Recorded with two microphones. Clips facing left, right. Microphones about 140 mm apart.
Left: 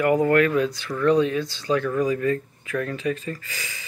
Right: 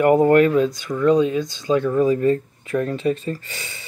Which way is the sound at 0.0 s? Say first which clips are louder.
Right 5 dB; 30° right (ahead or behind).